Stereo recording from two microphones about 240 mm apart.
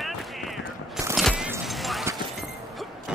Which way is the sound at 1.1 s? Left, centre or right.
Centre.